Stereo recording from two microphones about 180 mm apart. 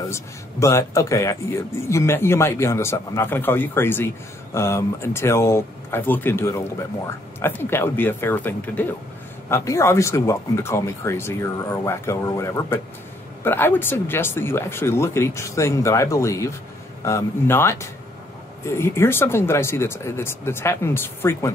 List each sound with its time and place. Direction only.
0.1 s speech: 15° left (ahead or behind)